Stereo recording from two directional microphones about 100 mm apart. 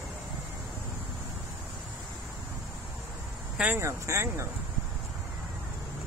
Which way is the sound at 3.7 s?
30° right (ahead or behind).